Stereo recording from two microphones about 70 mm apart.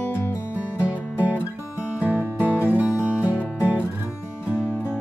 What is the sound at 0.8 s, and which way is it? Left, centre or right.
Music, right.